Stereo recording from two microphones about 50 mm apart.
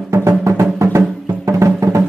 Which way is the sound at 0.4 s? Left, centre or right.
Right.